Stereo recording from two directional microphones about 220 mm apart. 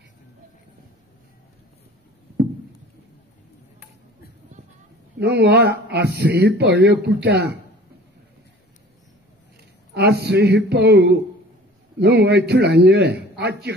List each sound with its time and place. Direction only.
5.2 s speech: 50° right (ahead or behind)
9.9 s speech: 50° right (ahead or behind)